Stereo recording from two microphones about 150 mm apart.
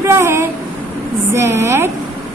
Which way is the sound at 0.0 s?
20° right (ahead or behind).